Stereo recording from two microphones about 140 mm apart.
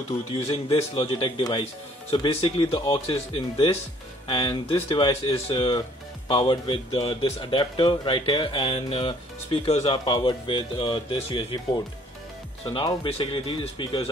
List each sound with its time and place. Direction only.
0.7 s a man's voice: 40° left (ahead or behind)
10.0 s speech: 35° left (ahead or behind)